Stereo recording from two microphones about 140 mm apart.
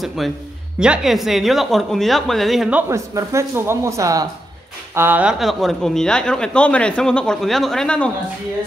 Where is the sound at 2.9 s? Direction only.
20° right (ahead or behind); by 8.1 s 5° left (ahead or behind).